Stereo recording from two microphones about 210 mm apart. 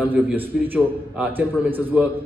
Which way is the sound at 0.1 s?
10° right (ahead or behind).